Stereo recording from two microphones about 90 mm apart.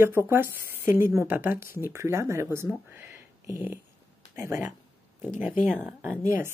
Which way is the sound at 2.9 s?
25° right (ahead or behind).